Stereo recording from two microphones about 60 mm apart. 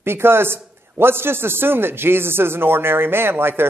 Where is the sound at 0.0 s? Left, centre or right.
Right.